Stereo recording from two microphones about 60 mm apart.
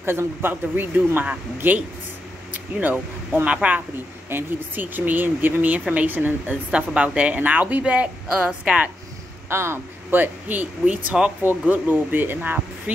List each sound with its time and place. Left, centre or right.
0.0 s a man's voice: right
2.5 s air conditioning: right
3.4 s a woman's voice: right
4.3 s a man's voice: right
6.7 s a woman's voice: centre
9.5 s a woman's voice: right
10.1 s a woman's voice: right
12.9 s a sound: right